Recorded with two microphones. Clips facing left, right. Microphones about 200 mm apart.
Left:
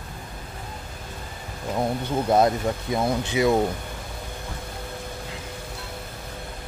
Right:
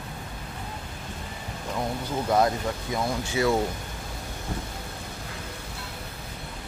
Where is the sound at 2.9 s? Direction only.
20° left (ahead or behind).